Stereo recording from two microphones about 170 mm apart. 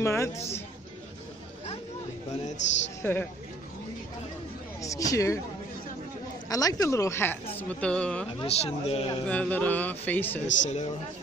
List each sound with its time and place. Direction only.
0.0 s speech: 15° left (ahead or behind)
3.0 s speech: 10° left (ahead or behind)
4.8 s speech: 20° left (ahead or behind)
6.5 s speech: 20° left (ahead or behind)
8.4 s a man's voice: 35° left (ahead or behind)
9.3 s speech: 10° left (ahead or behind)
10.4 s speech: 45° left (ahead or behind)